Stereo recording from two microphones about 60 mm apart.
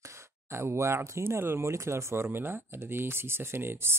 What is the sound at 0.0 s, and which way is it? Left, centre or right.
Speech, right.